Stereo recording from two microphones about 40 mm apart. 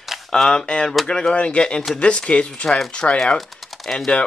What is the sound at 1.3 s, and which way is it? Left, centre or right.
Speech, left.